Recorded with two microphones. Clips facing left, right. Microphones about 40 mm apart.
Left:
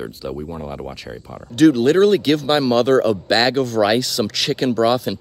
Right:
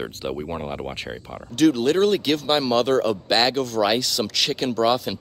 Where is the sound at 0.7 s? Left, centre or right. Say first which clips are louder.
Even; right.